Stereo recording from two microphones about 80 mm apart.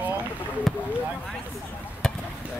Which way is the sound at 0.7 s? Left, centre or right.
Centre.